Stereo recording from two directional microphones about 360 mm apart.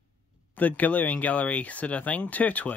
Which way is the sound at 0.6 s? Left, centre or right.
Centre.